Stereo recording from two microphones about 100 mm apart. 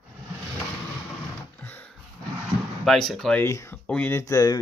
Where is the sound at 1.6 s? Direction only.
20° left (ahead or behind).